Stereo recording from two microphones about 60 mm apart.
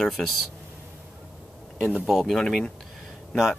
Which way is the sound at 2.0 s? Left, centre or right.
Centre.